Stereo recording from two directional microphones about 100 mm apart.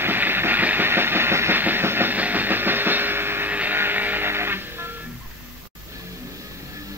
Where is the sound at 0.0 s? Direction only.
20° right (ahead or behind).